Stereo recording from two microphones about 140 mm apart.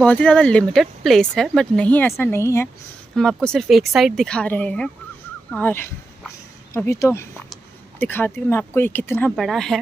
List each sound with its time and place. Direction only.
0.0 s speech: 10° left (ahead or behind)
3.2 s speech: 5° left (ahead or behind)
9.3 s speech: 5° left (ahead or behind)